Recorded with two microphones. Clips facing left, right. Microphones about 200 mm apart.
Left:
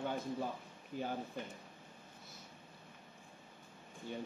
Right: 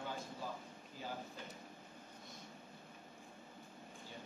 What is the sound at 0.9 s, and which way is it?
Speech, 60° left (ahead or behind).